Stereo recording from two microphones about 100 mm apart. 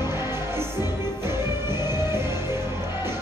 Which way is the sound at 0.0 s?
25° right (ahead or behind).